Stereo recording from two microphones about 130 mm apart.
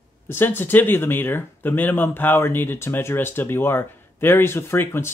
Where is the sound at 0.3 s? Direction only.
15° left (ahead or behind).